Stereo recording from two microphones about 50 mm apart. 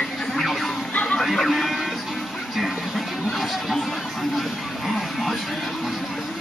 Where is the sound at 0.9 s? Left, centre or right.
Left.